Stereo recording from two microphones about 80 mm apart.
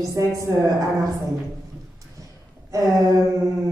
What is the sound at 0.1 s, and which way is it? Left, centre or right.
Speech, right.